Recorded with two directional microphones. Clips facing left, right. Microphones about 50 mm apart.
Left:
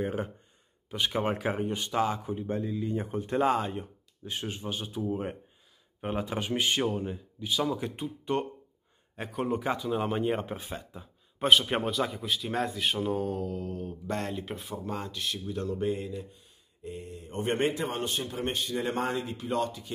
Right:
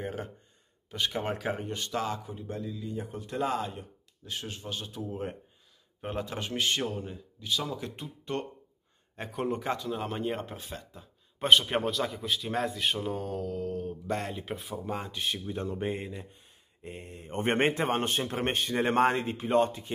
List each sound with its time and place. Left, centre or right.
0.0 s a man's voice: centre; by 3.8 s left
4.2 s a man's voice: left; by 15.9 s right
16.8 s a man's voice: right